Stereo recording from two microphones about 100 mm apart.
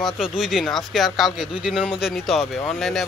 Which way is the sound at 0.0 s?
Centre (ahead or behind).